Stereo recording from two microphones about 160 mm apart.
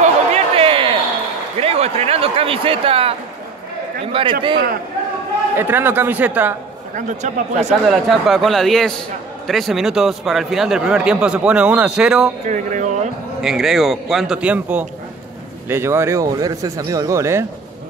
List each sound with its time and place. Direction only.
0.0 s chatter: 40° right (ahead or behind)
1.6 s speech: 40° right (ahead or behind)
5.6 s speech: 15° right (ahead or behind)
7.0 s a man's voice: 50° right (ahead or behind)
7.9 s a man's voice: centre (ahead or behind)
12.4 s a man's voice: 50° right (ahead or behind)
13.4 s a man's voice: centre (ahead or behind)